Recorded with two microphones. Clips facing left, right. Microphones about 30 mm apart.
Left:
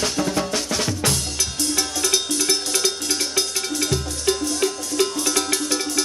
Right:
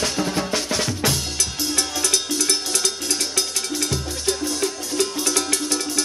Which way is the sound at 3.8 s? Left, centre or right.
Centre.